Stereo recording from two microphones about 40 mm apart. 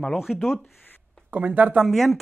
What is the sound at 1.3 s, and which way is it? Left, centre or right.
Speech, right.